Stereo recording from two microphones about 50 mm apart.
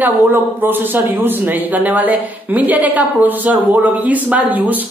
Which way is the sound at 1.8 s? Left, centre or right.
Right.